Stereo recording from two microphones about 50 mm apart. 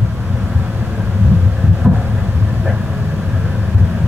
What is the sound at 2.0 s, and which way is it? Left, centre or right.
Vehicle, centre.